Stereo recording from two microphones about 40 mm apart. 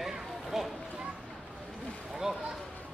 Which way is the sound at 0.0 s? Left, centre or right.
Centre.